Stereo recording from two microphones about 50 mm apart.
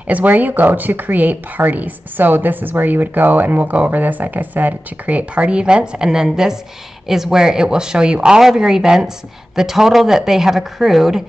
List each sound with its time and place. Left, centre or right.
0.0 s speech: right; by 11.2 s centre